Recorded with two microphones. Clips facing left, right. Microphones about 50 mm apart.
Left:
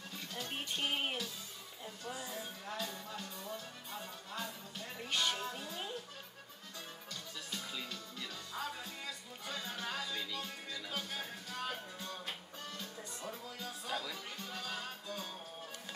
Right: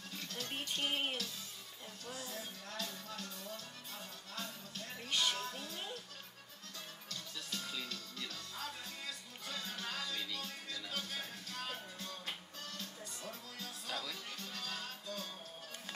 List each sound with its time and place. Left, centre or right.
0.3 s speech: centre
2.0 s music: centre
7.1 s music: centre